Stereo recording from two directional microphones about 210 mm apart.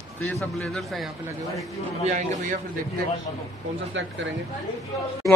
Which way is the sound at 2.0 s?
35° right (ahead or behind).